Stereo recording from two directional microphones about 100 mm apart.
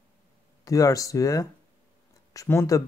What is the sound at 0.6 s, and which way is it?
Speech, 35° left (ahead or behind).